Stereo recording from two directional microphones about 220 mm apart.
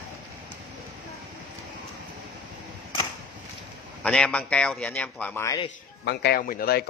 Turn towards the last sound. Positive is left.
turn(degrees=40)  # may be behind; listen again after turning